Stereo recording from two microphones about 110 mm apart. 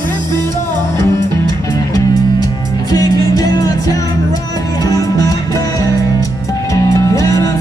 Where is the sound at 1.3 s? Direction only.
35° left (ahead or behind).